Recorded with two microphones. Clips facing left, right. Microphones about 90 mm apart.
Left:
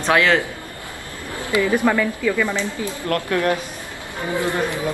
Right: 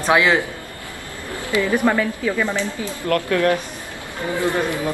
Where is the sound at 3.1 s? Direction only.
25° left (ahead or behind).